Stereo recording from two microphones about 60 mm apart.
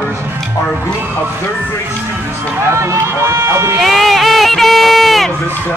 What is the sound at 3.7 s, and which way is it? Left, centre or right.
Speech, centre.